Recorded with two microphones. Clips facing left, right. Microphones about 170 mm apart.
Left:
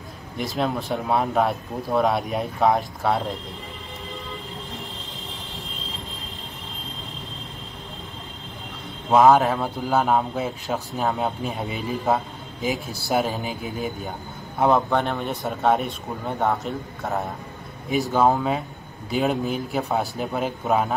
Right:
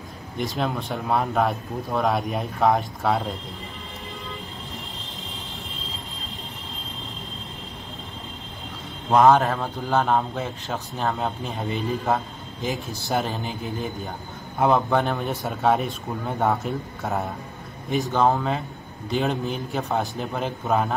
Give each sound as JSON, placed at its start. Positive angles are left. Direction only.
{"t": 0.4, "sound": "speech", "side_deg": 0}
{"t": 9.1, "sound": "speech", "side_deg": 0}